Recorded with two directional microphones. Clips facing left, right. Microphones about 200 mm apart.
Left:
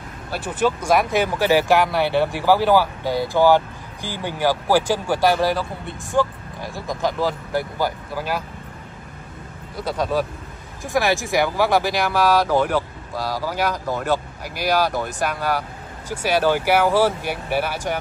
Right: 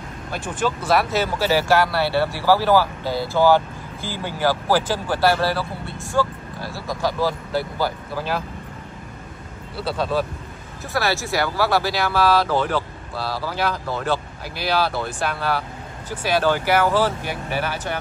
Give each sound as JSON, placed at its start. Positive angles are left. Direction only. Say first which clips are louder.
{"t": 0.5, "sound": "speech", "louder": "left 2 dB", "side_deg": 10}
{"t": 9.8, "sound": "speech", "louder": "left 1 dB", "side_deg": 15}